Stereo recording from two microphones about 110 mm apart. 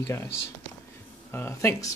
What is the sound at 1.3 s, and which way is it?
Speech, 20° left (ahead or behind).